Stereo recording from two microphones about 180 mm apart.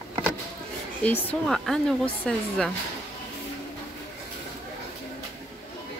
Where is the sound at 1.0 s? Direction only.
10° left (ahead or behind).